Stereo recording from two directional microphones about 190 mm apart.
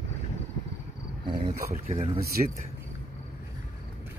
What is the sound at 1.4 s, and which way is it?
Speech, 35° right (ahead or behind).